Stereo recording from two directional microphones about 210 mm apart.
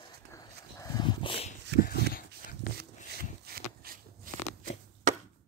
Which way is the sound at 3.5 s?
45° right (ahead or behind).